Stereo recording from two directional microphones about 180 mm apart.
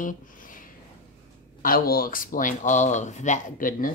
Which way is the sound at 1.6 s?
55° left (ahead or behind).